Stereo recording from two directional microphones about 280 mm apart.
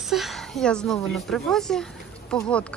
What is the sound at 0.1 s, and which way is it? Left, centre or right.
A woman's voice, centre.